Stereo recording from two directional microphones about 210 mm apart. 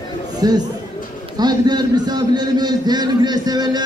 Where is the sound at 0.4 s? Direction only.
20° right (ahead or behind).